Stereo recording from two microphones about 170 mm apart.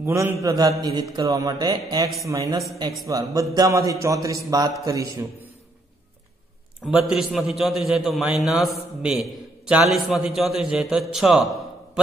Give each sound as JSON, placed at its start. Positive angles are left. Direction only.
{"t": 0.0, "sound": "mantra", "side_deg": -15}
{"t": 0.4, "sound": "a man's voice", "side_deg": -20}
{"t": 3.1, "sound": "a man's voice", "side_deg": -20}
{"t": 6.8, "sound": "a man's voice", "side_deg": 0}